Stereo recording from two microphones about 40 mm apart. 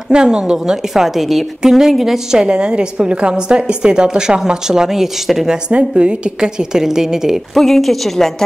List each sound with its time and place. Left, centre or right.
0.1 s a woman's voice: centre
1.0 s a woman's voice: centre
2.4 s a woman's voice: right
5.7 s a woman's voice: right; by 7.3 s centre
7.5 s speech: centre